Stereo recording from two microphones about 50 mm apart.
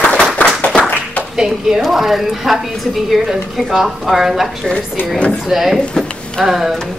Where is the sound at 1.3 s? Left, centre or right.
Centre.